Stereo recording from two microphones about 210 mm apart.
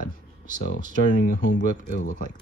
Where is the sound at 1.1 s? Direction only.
40° left (ahead or behind).